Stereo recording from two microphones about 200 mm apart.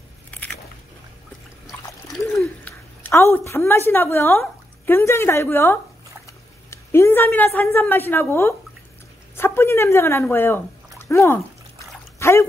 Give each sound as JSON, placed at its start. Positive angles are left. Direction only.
{"t": 2.3, "sound": "a woman's voice", "side_deg": 5}
{"t": 12.2, "sound": "dog", "side_deg": 15}